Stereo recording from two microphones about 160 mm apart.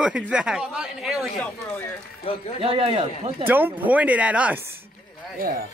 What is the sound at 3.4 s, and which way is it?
Speech, 10° right (ahead or behind).